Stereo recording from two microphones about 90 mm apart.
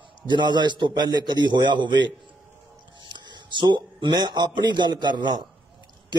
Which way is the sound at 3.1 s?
60° right (ahead or behind).